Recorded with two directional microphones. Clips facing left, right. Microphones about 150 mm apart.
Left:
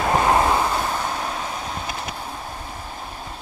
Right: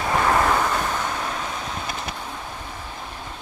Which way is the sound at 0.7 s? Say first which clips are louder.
Left 1 dB; 10° left (ahead or behind).